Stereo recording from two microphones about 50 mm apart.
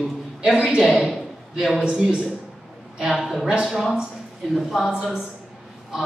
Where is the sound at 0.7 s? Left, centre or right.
Centre.